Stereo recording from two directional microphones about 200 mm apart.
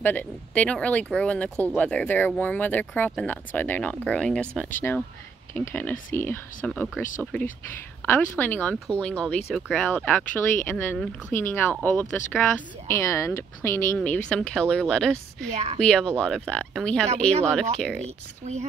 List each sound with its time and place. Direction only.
0.0 s speech: 10° left (ahead or behind)
15.5 s speech: 35° right (ahead or behind)
15.8 s speech: 5° left (ahead or behind)
18.4 s speech: 35° right (ahead or behind)